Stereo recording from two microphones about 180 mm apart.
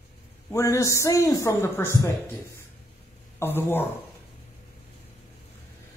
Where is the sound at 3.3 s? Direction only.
10° left (ahead or behind).